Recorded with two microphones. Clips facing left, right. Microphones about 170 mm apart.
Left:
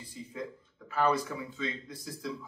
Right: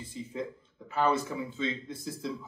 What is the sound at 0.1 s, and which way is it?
Speech, 25° right (ahead or behind).